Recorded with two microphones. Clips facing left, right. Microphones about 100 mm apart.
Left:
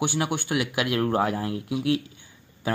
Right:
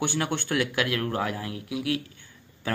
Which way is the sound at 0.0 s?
15° left (ahead or behind).